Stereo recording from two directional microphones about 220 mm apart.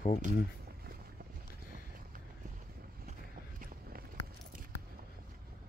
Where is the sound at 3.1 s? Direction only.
40° right (ahead or behind).